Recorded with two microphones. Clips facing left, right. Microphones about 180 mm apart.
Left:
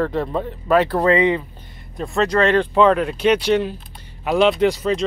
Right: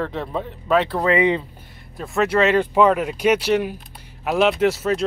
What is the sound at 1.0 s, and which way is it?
Speech, 15° right (ahead or behind).